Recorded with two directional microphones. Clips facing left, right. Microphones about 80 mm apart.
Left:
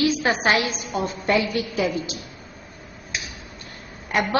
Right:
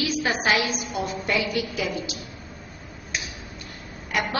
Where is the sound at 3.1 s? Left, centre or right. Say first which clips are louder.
Even; centre.